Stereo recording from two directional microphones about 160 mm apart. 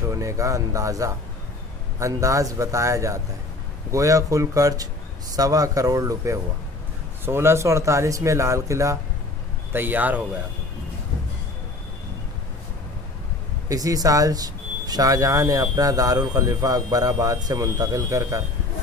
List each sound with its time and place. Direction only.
0.1 s speech: 20° right (ahead or behind)
13.7 s speech: 20° right (ahead or behind)